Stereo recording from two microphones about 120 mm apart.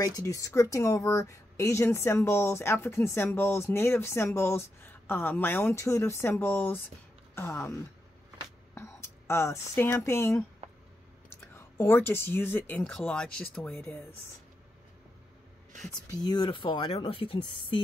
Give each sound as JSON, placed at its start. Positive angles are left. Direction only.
{"t": 0.0, "sound": "a woman's voice", "side_deg": 30}
{"t": 8.7, "sound": "whispering", "side_deg": 20}
{"t": 9.8, "sound": "a woman's voice", "side_deg": 20}
{"t": 11.5, "sound": "speech", "side_deg": 20}
{"t": 16.2, "sound": "speech", "side_deg": 35}